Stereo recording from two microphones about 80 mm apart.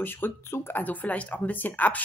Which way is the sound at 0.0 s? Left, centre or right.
Left.